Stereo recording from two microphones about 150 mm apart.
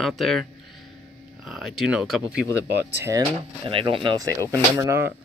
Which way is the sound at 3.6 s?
35° right (ahead or behind).